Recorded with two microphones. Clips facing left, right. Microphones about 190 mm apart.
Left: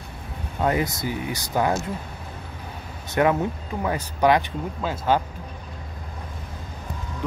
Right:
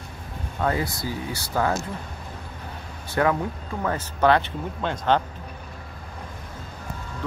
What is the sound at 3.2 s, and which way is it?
Speech, 20° left (ahead or behind).